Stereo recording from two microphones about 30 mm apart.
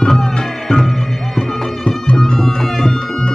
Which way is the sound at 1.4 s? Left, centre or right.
Left.